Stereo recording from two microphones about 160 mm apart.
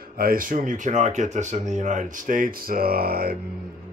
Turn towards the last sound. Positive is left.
turn(degrees=-70)  # may be behind; listen again after turning